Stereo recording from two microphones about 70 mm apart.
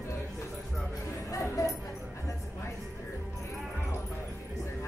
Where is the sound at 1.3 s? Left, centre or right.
Left.